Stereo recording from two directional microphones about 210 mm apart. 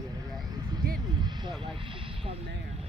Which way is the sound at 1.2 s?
20° right (ahead or behind).